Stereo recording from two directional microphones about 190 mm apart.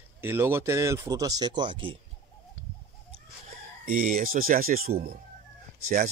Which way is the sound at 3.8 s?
45° right (ahead or behind).